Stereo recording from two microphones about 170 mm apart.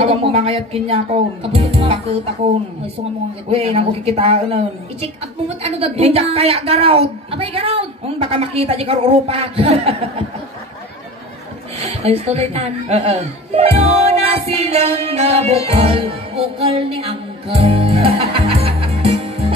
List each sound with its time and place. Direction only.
0.0 s a woman's voice: 35° right (ahead or behind)
3.4 s a woman's voice: 35° right (ahead or behind)
11.8 s speech: 35° right (ahead or behind)